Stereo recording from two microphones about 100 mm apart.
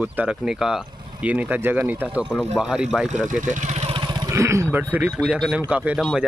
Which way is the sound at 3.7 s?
90° right.